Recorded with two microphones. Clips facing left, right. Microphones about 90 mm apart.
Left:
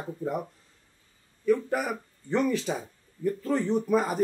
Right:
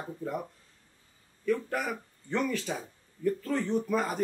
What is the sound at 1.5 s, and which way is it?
Speech, 15° left (ahead or behind).